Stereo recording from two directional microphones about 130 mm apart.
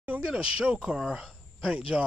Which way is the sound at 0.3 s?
5° right (ahead or behind).